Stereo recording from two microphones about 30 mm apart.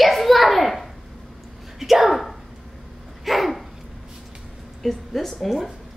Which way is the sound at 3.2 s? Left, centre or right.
Centre.